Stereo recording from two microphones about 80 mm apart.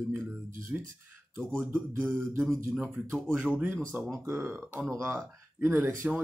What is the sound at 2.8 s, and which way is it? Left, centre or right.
Speech, centre.